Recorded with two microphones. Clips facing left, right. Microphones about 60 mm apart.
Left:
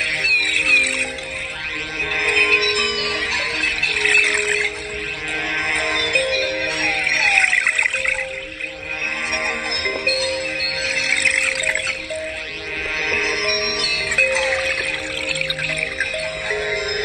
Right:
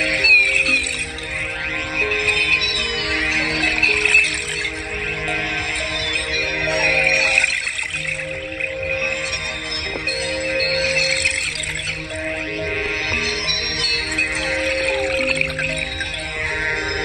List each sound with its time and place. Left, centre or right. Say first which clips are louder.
0.2 s music: right 7 dB; right
2.2 s music: left 2 dB; left
3.5 s music: right 3 dB; right
4.0 s music: left 1 dB; left
6.8 s music: right 5 dB; right
10.0 s music: left 1 dB; left
10.6 s music: right 5 dB; right
11.2 s music: left 4 dB; left
13.3 s music: left 3 dB; left
14.3 s music: left 1 dB; left
14.9 s music: right 6 dB; right